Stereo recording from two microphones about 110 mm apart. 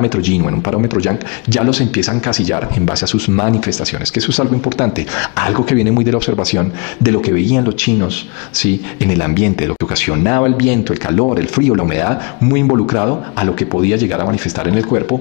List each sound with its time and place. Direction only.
0.0 s speech: 20° left (ahead or behind)
0.4 s speech: 30° left (ahead or behind)
1.7 s speech: 15° left (ahead or behind)